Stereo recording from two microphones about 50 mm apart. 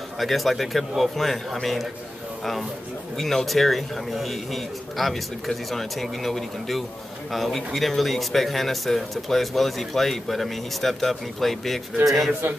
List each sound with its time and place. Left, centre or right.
0.2 s speech: centre
3.2 s speech: centre
12.3 s a man's voice: right